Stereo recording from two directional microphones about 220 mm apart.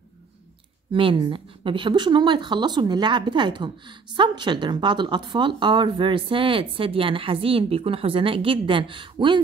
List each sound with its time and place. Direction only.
0.9 s speech: 25° right (ahead or behind)